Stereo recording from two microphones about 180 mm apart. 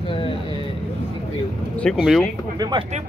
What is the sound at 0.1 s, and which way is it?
Vehicle, 30° left (ahead or behind).